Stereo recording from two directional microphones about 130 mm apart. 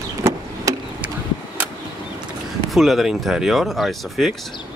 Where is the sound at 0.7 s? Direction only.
25° right (ahead or behind).